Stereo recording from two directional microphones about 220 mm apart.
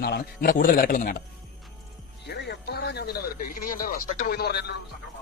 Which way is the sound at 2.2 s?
50° left (ahead or behind).